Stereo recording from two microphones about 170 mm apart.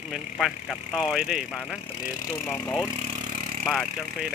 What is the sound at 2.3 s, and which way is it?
Speech, 15° left (ahead or behind).